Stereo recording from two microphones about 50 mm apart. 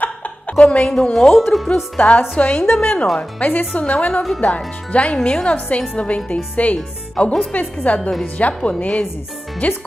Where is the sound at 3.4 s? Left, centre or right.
Left.